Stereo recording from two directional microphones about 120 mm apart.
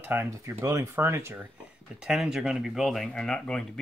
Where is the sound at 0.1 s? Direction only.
20° right (ahead or behind).